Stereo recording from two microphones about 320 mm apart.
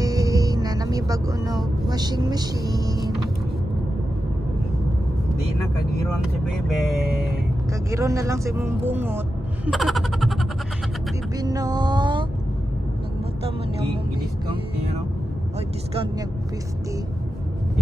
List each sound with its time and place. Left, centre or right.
0.0 s music: centre
1.9 s speech: centre
7.0 s speech: right
7.9 s speech: centre
9.7 s a sound: centre
11.3 s a sound: centre